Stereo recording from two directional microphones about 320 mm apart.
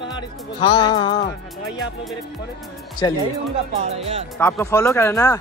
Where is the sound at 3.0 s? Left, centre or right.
Centre.